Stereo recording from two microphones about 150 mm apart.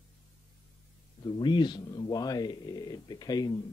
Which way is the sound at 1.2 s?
30° left (ahead or behind).